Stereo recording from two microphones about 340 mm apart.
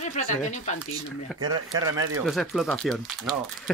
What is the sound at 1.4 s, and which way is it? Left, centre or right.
Speech, centre.